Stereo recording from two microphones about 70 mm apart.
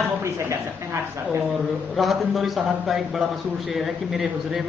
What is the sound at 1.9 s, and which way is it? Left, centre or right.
A man's voice, centre.